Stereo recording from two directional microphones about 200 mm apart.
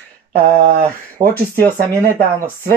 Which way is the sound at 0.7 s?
45° right (ahead or behind).